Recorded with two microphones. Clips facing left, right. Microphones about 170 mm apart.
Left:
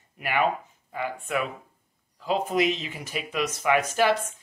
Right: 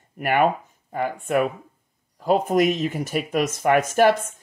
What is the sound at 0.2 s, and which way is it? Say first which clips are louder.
Speech: right 5 dB; 50° right (ahead or behind).